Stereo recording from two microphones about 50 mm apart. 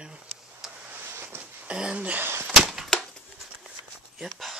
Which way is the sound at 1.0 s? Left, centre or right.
Right.